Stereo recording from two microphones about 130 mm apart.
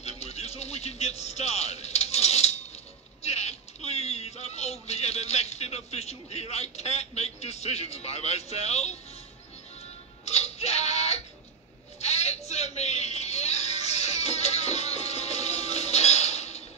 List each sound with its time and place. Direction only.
0.0 s music: 55° left (ahead or behind)
3.2 s speech: 55° left (ahead or behind)
10.2 s music: 55° left (ahead or behind)
12.0 s a sound: 55° left (ahead or behind)